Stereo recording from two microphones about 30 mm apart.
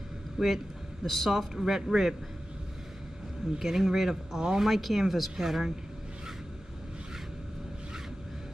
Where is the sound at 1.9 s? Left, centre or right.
Right.